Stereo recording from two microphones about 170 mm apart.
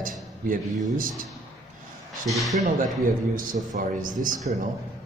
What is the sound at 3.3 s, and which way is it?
A man's voice, 55° right (ahead or behind).